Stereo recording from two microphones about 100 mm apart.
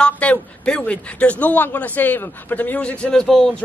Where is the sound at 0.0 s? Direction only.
10° left (ahead or behind).